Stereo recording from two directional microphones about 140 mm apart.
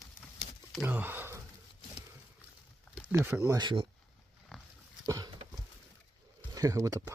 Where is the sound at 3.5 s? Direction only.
35° right (ahead or behind).